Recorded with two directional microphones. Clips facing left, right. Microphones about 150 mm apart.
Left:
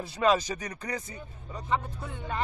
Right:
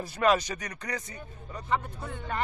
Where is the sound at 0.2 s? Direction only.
15° left (ahead or behind).